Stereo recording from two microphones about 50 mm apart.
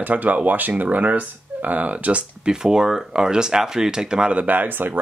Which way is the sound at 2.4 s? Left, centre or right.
Centre.